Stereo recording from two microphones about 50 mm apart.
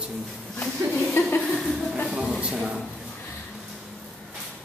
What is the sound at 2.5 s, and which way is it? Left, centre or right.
Speech, centre.